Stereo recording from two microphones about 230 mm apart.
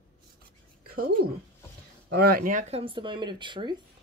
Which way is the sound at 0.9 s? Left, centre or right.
Right.